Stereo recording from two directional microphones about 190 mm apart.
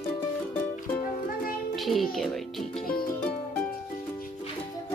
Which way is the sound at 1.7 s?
Centre (ahead or behind).